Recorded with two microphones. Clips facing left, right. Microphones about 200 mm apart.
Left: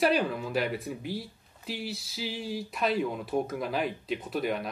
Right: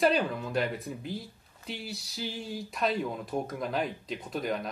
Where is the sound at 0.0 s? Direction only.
5° left (ahead or behind).